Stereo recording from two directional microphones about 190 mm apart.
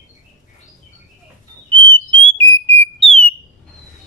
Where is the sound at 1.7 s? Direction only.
25° right (ahead or behind).